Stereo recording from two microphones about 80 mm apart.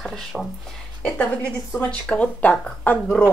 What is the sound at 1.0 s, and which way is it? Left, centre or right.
A woman's voice, left.